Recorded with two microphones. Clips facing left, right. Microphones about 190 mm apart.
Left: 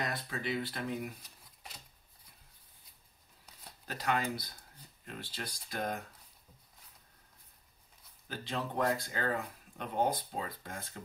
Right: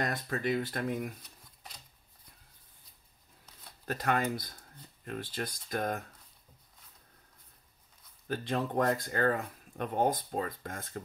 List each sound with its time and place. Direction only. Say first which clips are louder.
0.0 s speech: right 5 dB; 45° right (ahead or behind)
3.8 s speech: right 3 dB; 50° right (ahead or behind)
8.3 s speech: right 6 dB; 50° right (ahead or behind)